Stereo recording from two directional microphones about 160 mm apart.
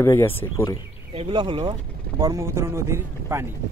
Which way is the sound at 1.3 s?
30° right (ahead or behind).